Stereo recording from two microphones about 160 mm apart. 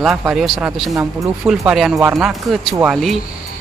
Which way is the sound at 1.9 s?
20° right (ahead or behind).